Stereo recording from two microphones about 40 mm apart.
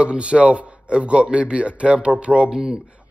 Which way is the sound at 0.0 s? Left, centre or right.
Right.